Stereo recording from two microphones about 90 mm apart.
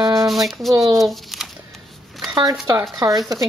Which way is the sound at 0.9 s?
Centre (ahead or behind).